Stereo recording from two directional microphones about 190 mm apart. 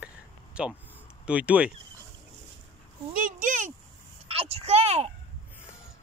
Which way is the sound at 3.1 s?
45° right (ahead or behind).